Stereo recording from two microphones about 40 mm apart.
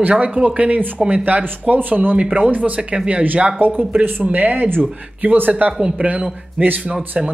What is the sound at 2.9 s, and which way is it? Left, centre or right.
Speech, right.